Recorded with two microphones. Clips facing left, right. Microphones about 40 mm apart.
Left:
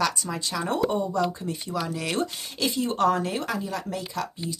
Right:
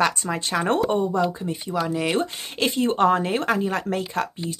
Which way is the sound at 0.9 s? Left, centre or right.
Right.